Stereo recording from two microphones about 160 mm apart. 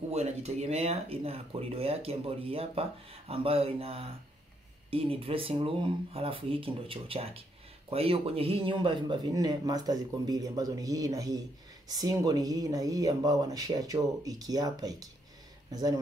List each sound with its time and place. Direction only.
0.1 s speech: 45° right (ahead or behind); by 15.0 s 25° right (ahead or behind)